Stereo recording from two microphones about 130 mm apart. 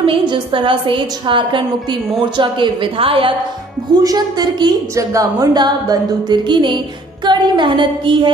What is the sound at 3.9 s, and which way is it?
A woman's voice, 30° right (ahead or behind).